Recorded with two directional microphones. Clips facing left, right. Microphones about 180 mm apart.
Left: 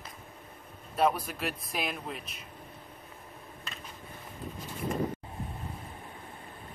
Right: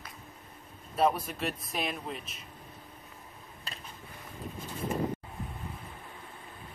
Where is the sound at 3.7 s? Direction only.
35° right (ahead or behind).